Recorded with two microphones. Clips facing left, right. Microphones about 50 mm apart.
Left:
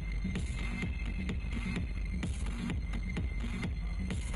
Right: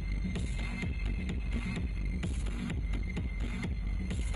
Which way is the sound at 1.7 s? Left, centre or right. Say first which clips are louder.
Right 1 dB; left.